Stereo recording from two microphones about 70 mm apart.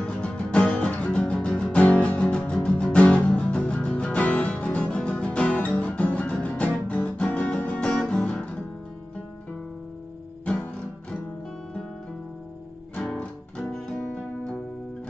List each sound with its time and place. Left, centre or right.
0.0 s music: centre
10.4 s guitar: centre
12.9 s music: centre